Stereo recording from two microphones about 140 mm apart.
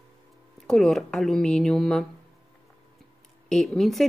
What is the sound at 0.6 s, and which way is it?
Speech, 5° left (ahead or behind).